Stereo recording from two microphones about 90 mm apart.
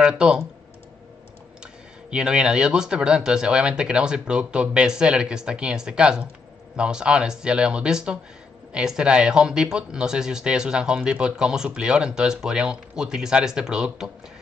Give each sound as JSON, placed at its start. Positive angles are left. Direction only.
{"t": 0.0, "sound": "speech", "side_deg": -10}
{"t": 1.6, "sound": "speech", "side_deg": -10}